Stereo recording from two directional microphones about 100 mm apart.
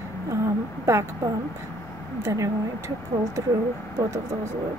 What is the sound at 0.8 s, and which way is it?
A woman's voice, 30° right (ahead or behind).